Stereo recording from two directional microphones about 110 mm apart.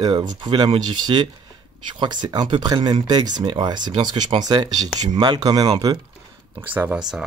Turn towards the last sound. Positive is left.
turn(degrees=-5)  # may be behind; listen again after turning